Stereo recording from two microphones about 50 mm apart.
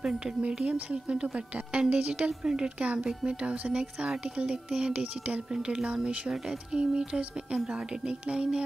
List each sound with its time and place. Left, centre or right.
0.7 s a woman's voice: right